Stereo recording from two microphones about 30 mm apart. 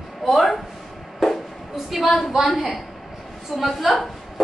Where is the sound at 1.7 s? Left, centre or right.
Centre.